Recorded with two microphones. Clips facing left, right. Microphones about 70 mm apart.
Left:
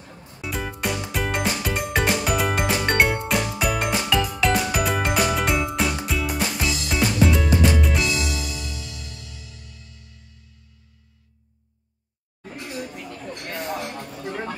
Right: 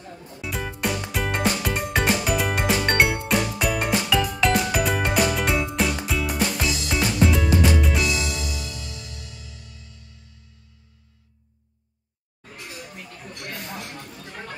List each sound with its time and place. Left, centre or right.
0.4 s music: centre
9.0 s music: centre
13.3 s a sound: left